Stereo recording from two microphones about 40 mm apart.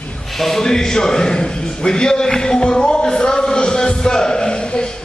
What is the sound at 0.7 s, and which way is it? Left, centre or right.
A man's voice, centre.